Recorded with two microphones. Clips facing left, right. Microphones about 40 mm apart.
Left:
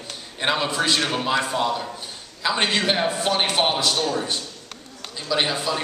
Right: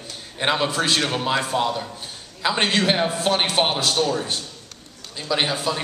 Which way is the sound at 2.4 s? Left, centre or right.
Centre.